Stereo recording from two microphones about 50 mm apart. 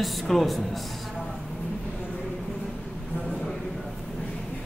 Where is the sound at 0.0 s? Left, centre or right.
Centre.